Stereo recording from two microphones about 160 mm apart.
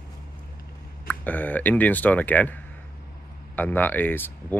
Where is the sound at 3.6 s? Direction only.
10° left (ahead or behind).